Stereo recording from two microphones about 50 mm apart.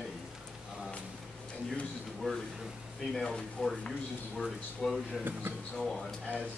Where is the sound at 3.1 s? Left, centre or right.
Centre.